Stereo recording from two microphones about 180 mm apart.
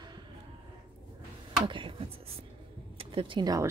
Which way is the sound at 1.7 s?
30° right (ahead or behind).